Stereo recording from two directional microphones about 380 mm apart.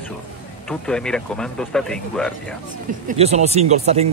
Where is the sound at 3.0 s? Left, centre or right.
Centre.